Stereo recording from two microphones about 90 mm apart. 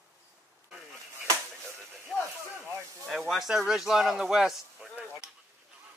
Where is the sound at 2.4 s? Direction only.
30° right (ahead or behind).